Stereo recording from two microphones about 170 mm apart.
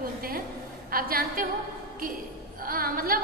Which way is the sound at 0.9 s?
60° right (ahead or behind).